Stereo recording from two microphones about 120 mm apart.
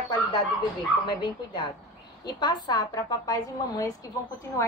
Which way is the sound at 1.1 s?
40° left (ahead or behind).